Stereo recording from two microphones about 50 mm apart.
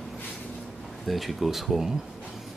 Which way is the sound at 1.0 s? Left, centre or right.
Centre.